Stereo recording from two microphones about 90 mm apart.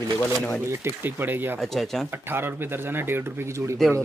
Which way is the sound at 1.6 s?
5° left (ahead or behind).